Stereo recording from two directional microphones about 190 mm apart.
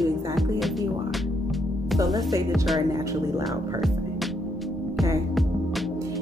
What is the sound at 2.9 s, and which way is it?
Speech, 15° right (ahead or behind).